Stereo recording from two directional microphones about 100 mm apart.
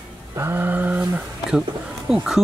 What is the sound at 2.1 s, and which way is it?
Speech, 5° right (ahead or behind).